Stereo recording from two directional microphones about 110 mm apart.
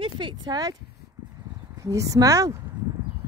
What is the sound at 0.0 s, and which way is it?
Speech, 45° right (ahead or behind).